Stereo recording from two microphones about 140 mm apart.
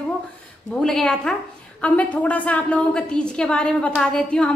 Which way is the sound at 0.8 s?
5° left (ahead or behind).